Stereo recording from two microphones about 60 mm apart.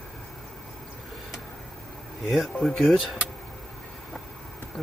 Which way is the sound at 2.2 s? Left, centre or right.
Centre.